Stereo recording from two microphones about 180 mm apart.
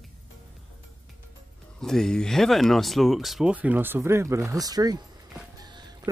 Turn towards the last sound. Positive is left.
turn(degrees=-25)  # may be behind; listen again after turning